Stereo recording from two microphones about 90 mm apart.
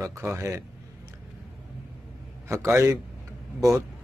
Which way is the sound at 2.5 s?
35° right (ahead or behind).